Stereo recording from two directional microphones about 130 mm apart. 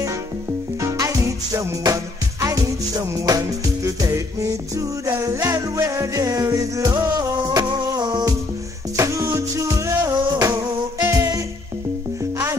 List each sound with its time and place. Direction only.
0.7 s music: 25° right (ahead or behind)
8.9 s music: 25° right (ahead or behind)